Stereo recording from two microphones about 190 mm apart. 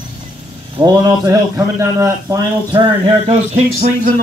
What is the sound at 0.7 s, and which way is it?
A man's voice, 20° right (ahead or behind).